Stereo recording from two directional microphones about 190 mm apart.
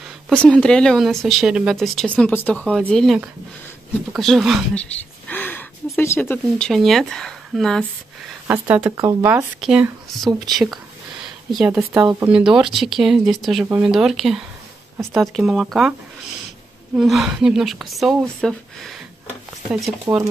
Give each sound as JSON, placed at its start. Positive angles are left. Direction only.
{"t": 0.5, "sound": "speech", "side_deg": 5}
{"t": 5.3, "sound": "a sound", "side_deg": 10}
{"t": 5.9, "sound": "speech", "side_deg": 10}
{"t": 8.9, "sound": "speech", "side_deg": -20}
{"t": 9.6, "sound": "speech", "side_deg": 0}
{"t": 11.9, "sound": "speech", "side_deg": -15}
{"t": 12.3, "sound": "speech", "side_deg": -5}
{"t": 16.9, "sound": "speech", "side_deg": 0}